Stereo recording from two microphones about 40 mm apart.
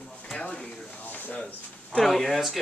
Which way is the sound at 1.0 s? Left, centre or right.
Left.